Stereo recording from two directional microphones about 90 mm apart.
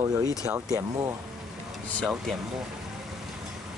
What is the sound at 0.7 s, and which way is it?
Speech, 40° right (ahead or behind).